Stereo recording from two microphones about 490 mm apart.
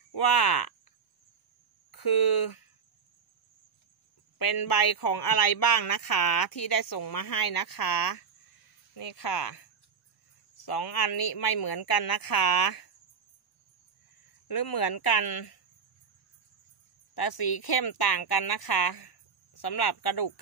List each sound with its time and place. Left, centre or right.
0.1 s speech: left
1.9 s a sound: left
4.4 s speech: left
14.5 s speech: left
17.1 s speech: left